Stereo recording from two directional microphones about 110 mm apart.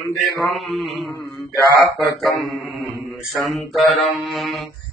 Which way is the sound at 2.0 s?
Centre (ahead or behind).